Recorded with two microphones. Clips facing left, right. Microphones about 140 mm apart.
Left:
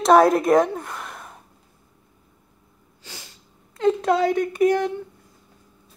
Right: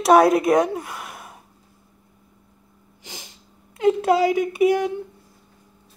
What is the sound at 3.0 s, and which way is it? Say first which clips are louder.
Sneeze: right 2 dB; 15° right (ahead or behind).